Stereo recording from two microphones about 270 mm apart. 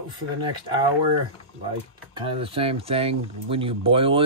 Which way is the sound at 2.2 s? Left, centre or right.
Centre.